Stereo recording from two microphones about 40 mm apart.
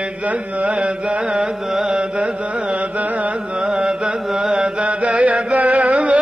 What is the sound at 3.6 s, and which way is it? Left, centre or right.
Carnatic music, centre.